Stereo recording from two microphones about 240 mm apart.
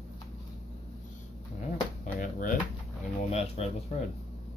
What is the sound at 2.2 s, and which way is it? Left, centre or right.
Drawer open or close, left.